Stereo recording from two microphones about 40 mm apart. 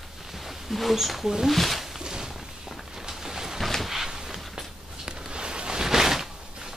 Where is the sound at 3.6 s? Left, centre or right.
Centre.